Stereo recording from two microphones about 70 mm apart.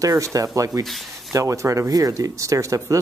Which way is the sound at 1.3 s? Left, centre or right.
Right.